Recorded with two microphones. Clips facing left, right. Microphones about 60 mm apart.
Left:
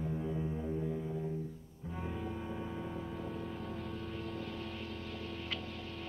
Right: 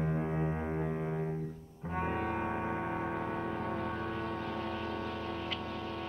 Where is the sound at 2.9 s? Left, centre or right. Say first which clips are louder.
Right 6 dB; right.